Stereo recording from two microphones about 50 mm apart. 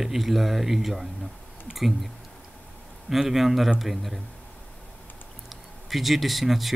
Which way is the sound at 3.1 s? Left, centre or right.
Centre.